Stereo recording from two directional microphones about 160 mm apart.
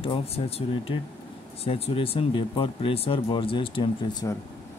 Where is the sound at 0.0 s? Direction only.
35° left (ahead or behind).